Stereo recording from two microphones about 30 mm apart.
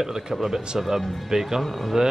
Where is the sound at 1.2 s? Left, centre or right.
Centre.